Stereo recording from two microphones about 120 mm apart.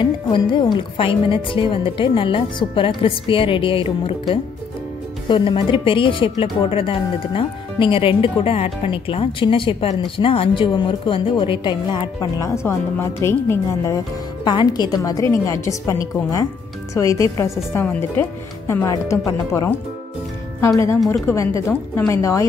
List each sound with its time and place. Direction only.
0.0 s a woman's voice: 40° left (ahead or behind)
5.3 s a woman's voice: 45° left (ahead or behind)
12.4 s a woman's voice: 20° left (ahead or behind)
14.4 s a woman's voice: 40° left (ahead or behind)
20.6 s a woman's voice: 25° left (ahead or behind)